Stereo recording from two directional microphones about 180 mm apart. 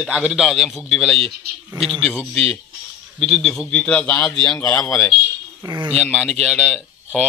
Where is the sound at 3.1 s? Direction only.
Centre (ahead or behind); by 4.9 s 15° left (ahead or behind).